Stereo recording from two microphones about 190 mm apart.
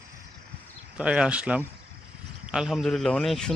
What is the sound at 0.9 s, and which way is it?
Speech, 5° right (ahead or behind).